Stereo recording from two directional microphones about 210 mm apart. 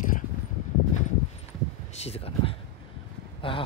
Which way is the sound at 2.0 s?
30° left (ahead or behind).